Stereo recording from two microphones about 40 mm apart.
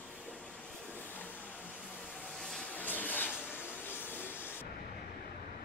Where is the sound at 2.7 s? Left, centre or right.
Left.